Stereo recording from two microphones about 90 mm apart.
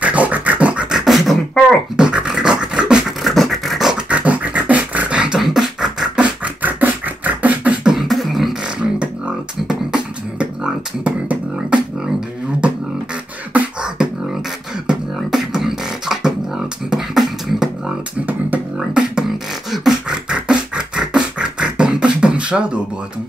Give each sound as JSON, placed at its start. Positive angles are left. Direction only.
{"t": 0.0, "sound": "beatboxing", "side_deg": -15}
{"t": 2.0, "sound": "a sound", "side_deg": -10}
{"t": 4.1, "sound": "beatboxing", "side_deg": -15}
{"t": 6.4, "sound": "beatboxing", "side_deg": -20}
{"t": 7.9, "sound": "beatboxing", "side_deg": 0}
{"t": 13.5, "sound": "beatboxing", "side_deg": -15}
{"t": 15.1, "sound": "beatboxing", "side_deg": -5}
{"t": 18.2, "sound": "beatboxing", "side_deg": -20}
{"t": 19.1, "sound": "beatboxing", "side_deg": -5}